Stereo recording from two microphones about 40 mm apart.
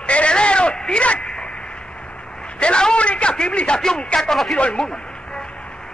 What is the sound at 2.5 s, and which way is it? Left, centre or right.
A man's voice, left.